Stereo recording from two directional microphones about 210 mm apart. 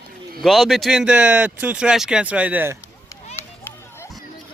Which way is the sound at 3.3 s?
10° left (ahead or behind).